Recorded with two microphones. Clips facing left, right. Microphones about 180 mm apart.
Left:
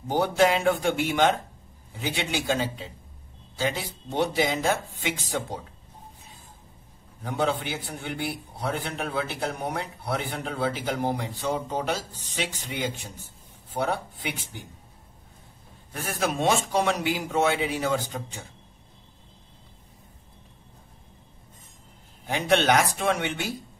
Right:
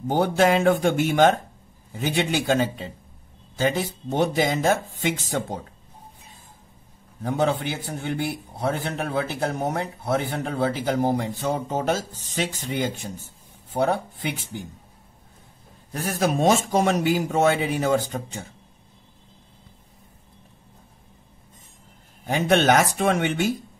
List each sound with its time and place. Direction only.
0.1 s a man's voice: 50° right (ahead or behind)
7.2 s a man's voice: 45° right (ahead or behind)
15.9 s a man's voice: 40° right (ahead or behind)
22.2 s a man's voice: 45° right (ahead or behind)